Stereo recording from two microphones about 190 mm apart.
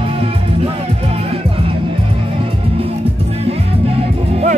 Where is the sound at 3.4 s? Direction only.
30° right (ahead or behind).